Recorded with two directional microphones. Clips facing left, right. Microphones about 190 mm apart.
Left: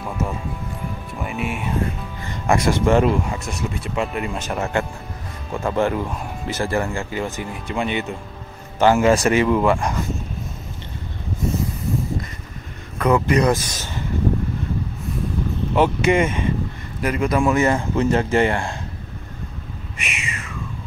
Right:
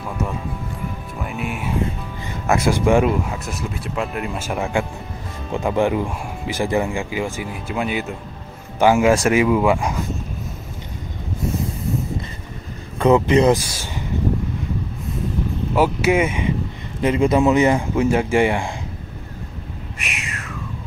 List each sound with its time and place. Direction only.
1.2 s speech: centre (ahead or behind)
13.0 s speech: 25° right (ahead or behind)
13.7 s speech: 10° right (ahead or behind)
15.7 s speech: 5° right (ahead or behind)
17.0 s speech: 25° right (ahead or behind)
20.0 s a sound: centre (ahead or behind)